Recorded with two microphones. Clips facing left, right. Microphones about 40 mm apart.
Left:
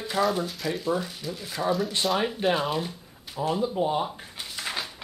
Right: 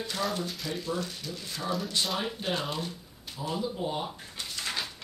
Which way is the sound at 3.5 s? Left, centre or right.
Left.